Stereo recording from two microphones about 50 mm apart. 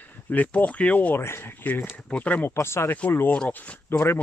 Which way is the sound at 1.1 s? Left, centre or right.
Left.